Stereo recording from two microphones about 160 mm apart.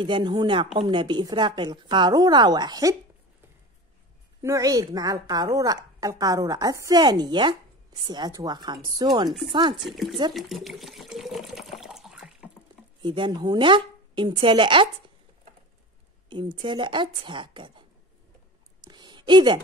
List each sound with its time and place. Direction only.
0.0 s a woman's voice: 30° right (ahead or behind)
4.4 s a woman's voice: 20° right (ahead or behind)
9.8 s speech: centre (ahead or behind)
10.3 s water: centre (ahead or behind)
13.0 s a woman's voice: 30° right (ahead or behind)
16.3 s a woman's voice: 30° right (ahead or behind)
18.9 s a sound: 30° right (ahead or behind)